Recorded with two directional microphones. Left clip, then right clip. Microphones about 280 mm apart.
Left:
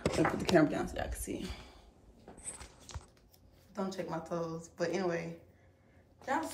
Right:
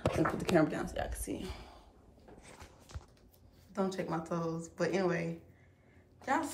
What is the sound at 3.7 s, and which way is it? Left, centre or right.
A woman's voice, centre.